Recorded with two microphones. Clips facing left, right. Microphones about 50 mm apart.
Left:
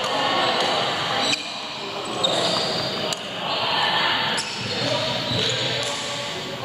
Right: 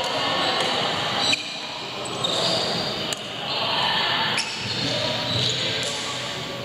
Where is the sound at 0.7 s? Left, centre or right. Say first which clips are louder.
Left 1 dB; centre.